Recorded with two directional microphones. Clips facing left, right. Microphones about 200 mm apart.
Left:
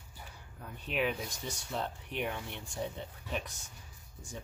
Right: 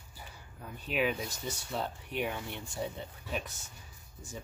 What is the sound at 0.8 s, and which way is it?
Speech, 5° right (ahead or behind).